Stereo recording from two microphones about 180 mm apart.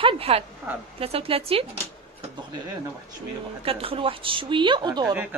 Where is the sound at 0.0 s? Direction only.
30° right (ahead or behind).